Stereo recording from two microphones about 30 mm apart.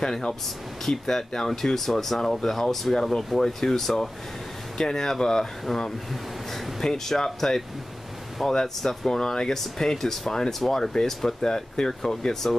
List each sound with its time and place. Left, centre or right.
0.8 s speech: centre
4.7 s speech: left